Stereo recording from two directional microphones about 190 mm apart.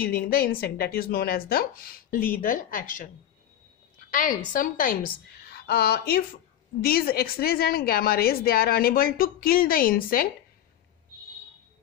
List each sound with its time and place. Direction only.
0.0 s a woman's voice: 50° left (ahead or behind)
4.1 s a woman's voice: 45° left (ahead or behind)